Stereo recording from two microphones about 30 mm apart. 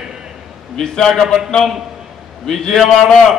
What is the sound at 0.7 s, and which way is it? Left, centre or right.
Speech, centre.